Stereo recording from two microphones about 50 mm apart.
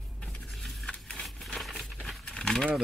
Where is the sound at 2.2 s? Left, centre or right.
Centre.